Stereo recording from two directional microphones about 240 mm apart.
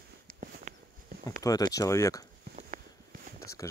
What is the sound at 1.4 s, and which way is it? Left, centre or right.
Speech, centre.